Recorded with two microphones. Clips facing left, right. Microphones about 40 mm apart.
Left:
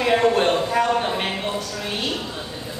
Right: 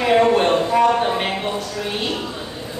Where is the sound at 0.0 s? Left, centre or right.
Centre.